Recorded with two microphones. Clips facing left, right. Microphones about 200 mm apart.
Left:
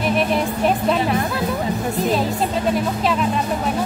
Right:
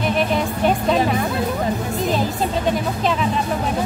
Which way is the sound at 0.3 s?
Centre (ahead or behind).